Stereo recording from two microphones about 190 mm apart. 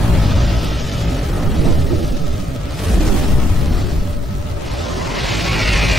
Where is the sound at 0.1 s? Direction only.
Centre (ahead or behind).